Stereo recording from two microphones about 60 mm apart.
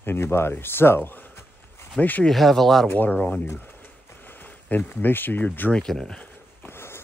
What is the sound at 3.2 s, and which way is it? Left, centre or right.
Speech, centre.